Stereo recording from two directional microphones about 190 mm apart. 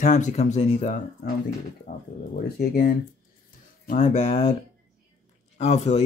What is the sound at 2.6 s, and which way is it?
Speech, 55° left (ahead or behind).